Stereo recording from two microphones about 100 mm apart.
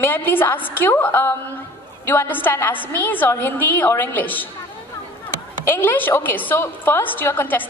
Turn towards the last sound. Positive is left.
turn(degrees=20)  # may be behind; listen again after turning